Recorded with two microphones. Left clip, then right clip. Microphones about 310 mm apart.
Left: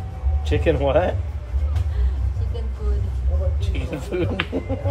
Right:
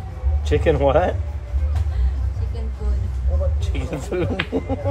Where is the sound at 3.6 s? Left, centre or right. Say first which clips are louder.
Right 1 dB; right.